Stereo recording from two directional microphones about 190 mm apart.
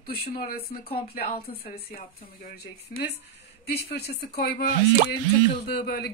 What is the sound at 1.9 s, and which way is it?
Speech, 50° left (ahead or behind).